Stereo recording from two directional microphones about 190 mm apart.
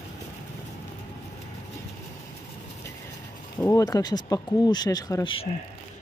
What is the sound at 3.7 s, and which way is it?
Speech, 20° left (ahead or behind).